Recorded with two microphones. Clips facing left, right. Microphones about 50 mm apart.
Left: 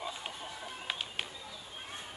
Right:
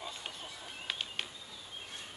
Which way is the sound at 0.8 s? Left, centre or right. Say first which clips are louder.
Even; centre.